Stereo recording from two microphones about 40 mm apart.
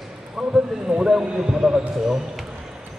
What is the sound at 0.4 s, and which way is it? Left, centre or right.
Speech, right.